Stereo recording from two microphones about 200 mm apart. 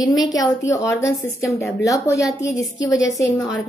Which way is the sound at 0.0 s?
20° left (ahead or behind).